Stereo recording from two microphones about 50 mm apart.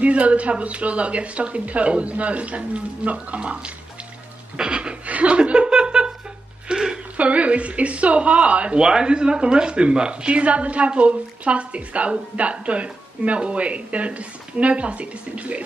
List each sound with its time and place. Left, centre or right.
0.0 s speech: right
4.6 s chuckle: centre
6.7 s a sound: centre
7.2 s speech: right